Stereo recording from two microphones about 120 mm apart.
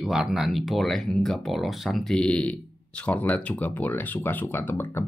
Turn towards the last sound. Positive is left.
turn(degrees=20)  # may be behind; listen again after turning